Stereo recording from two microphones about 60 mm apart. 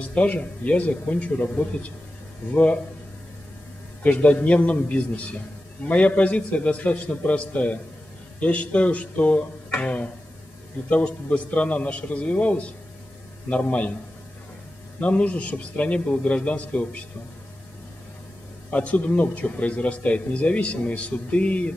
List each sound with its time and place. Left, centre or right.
0.0 s a man's voice: left
4.0 s a man's voice: left
15.0 s a man's voice: left
18.7 s a man's voice: left